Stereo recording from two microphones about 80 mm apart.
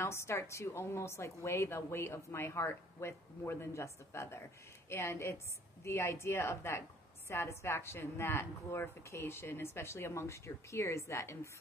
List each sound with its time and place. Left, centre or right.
0.0 s a woman's voice: left